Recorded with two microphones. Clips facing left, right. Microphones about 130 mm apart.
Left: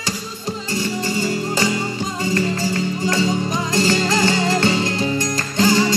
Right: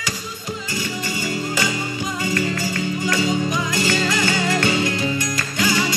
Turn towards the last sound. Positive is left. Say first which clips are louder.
# left 5 dB
turn(degrees=35)  # may be behind; listen again after turning